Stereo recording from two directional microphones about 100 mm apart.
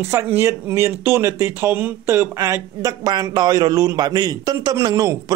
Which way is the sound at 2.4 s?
35° right (ahead or behind).